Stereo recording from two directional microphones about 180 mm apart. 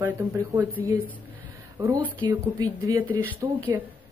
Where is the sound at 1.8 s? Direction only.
15° right (ahead or behind).